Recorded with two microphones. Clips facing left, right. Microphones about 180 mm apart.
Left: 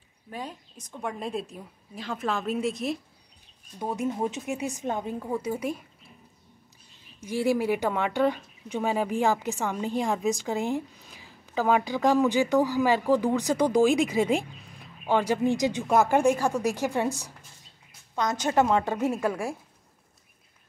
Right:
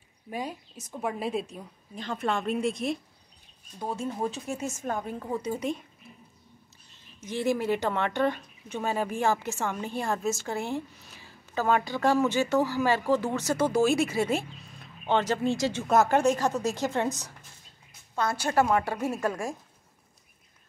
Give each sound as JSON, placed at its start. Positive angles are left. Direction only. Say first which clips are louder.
{"t": 0.3, "sound": "a woman's voice", "louder": "right 3 dB", "side_deg": -10}
{"t": 3.9, "sound": "speech", "louder": "left 3 dB", "side_deg": 15}
{"t": 5.2, "sound": "speech", "louder": "left 1 dB", "side_deg": 10}
{"t": 7.2, "sound": "speech", "louder": "left 2 dB", "side_deg": 10}